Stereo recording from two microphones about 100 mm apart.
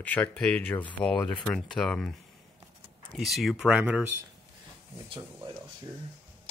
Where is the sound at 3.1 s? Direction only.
Centre (ahead or behind); by 4.1 s 15° right (ahead or behind).